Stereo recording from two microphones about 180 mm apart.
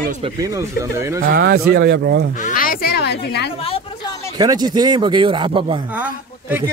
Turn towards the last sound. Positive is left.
turn(degrees=-10)  # may be behind; listen again after turning